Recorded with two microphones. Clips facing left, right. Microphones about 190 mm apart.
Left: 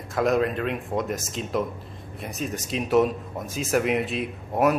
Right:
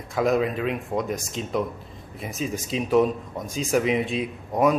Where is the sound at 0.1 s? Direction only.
Centre (ahead or behind).